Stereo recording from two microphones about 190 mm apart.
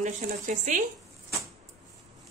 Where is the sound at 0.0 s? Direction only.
40° right (ahead or behind).